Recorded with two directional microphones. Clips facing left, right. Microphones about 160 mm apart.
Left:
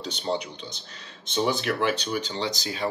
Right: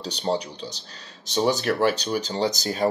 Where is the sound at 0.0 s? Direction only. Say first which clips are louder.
Right 3 dB; 40° right (ahead or behind).